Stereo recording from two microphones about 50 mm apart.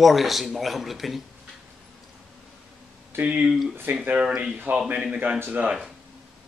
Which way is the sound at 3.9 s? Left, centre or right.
Right.